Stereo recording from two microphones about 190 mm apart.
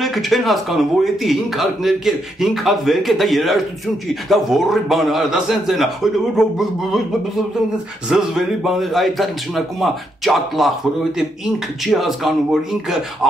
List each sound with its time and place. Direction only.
0.0 s a man's voice: centre (ahead or behind)
8.1 s a man's voice: centre (ahead or behind)
11.8 s a man's voice: centre (ahead or behind)